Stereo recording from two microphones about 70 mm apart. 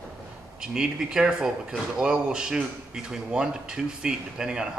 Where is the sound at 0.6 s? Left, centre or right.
Centre.